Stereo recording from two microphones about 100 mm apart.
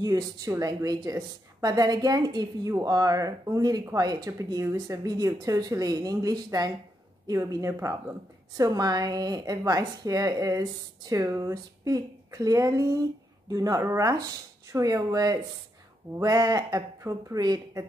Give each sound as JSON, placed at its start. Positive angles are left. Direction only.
{"t": 0.0, "sound": "speech", "side_deg": -40}